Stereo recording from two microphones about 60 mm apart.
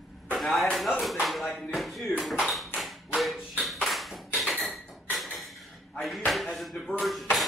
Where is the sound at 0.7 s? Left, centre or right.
Centre.